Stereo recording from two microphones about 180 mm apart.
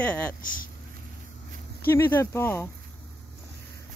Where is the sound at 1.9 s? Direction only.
10° left (ahead or behind).